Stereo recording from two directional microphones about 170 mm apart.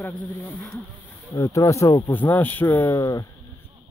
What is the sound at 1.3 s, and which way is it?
Speech, 20° left (ahead or behind).